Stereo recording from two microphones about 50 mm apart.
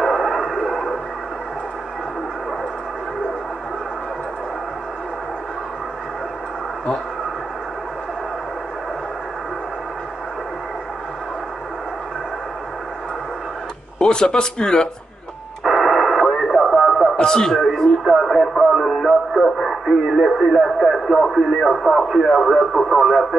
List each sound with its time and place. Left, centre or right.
0.0 s radio: centre
13.9 s speech: centre
15.6 s radio: centre
17.2 s speech: centre
18.0 s speech: centre